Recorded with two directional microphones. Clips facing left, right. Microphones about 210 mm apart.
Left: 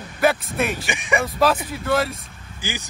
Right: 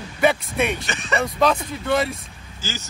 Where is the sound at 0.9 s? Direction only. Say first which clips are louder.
Left 1 dB; 15° left (ahead or behind).